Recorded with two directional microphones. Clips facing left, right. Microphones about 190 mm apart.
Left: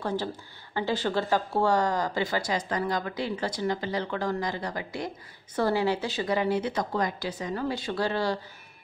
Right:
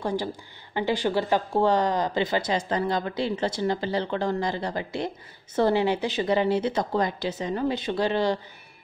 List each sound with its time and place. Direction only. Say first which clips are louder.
0.0 s a woman's voice: right 2 dB; 15° right (ahead or behind)